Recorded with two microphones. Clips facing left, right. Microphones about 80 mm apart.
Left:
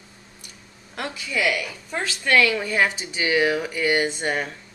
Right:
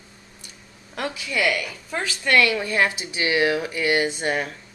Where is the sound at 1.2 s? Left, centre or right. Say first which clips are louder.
Even; centre.